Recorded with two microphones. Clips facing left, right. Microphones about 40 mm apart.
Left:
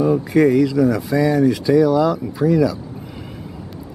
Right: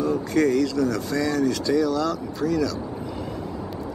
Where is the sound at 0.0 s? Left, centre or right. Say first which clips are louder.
Left 6 dB; centre.